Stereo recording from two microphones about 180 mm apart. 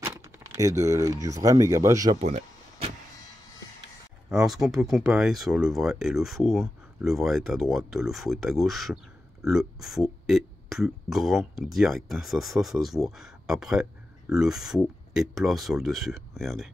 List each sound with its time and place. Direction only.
0.0 s speech: 15° right (ahead or behind)
2.1 s a sound: 35° right (ahead or behind)
4.3 s speech: centre (ahead or behind)